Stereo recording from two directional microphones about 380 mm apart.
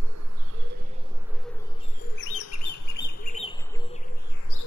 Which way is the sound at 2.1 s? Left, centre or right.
Left.